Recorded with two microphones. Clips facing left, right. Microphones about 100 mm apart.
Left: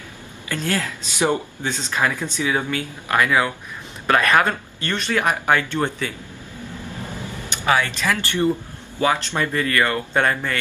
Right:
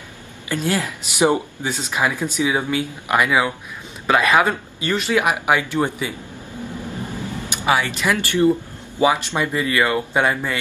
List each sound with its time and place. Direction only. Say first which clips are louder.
0.5 s speech: right 2 dB; 15° right (ahead or behind)
7.2 s speech: right 3 dB; 15° right (ahead or behind)